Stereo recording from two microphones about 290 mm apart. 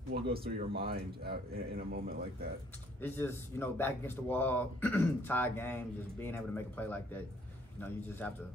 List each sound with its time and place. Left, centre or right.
0.4 s speech: right
3.0 s speech: centre
8.2 s a man's voice: centre